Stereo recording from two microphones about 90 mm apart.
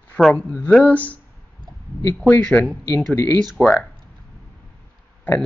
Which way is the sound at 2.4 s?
10° left (ahead or behind).